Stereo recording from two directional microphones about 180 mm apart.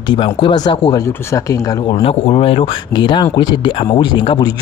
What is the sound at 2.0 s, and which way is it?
Speech, 35° left (ahead or behind).